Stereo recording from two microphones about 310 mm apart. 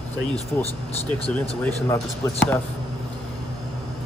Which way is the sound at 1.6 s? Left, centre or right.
Centre.